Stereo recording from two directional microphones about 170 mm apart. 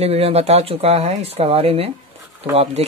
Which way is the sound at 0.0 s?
35° right (ahead or behind).